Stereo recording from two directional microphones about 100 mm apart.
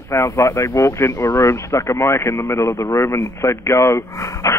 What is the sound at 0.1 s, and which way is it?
Speech, 30° left (ahead or behind).